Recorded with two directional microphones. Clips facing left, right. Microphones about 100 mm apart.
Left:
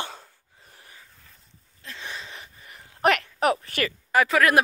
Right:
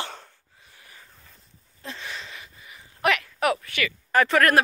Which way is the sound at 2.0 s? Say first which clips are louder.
Left 3 dB; 20° left (ahead or behind).